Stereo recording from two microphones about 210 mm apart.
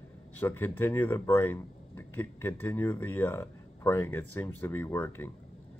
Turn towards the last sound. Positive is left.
turn(degrees=10)  # may be behind; listen again after turning